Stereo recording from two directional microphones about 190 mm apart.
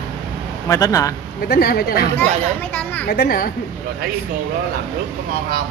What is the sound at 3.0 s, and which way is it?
Speech, 55° left (ahead or behind).